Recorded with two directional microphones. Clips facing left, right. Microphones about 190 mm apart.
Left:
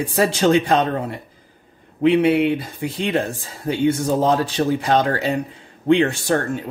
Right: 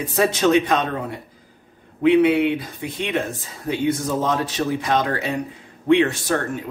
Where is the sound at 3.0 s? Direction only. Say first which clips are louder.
Left 2 dB; 35° left (ahead or behind).